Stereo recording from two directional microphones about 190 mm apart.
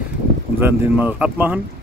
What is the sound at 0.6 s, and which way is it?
Speech, 10° right (ahead or behind).